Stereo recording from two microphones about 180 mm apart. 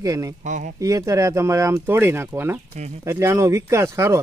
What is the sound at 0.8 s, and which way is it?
Speech, 20° right (ahead or behind).